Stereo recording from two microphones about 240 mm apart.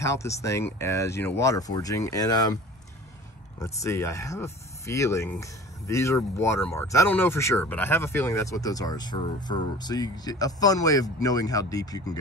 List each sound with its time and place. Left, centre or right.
0.0 s speech: centre
3.6 s speech: centre